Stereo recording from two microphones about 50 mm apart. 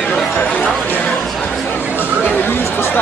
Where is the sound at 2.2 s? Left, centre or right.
Left.